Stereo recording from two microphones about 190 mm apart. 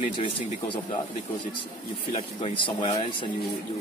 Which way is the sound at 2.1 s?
30° left (ahead or behind).